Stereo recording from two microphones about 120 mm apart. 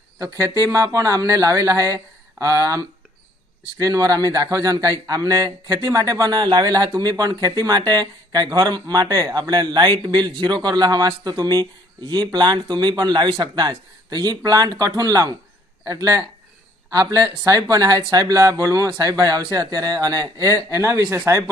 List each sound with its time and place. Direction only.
0.2 s speech: 25° right (ahead or behind)